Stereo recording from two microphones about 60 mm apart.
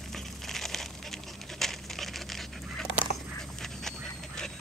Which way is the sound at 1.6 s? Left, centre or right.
Centre.